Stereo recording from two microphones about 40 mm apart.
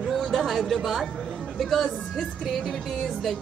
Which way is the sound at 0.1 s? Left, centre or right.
Centre.